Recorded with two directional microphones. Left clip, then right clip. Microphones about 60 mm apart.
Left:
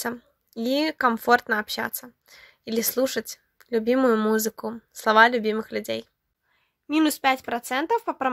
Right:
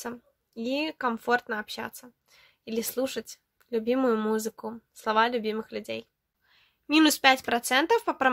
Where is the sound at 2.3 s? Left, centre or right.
Left.